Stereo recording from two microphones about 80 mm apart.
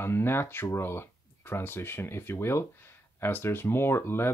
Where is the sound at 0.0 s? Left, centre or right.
Left.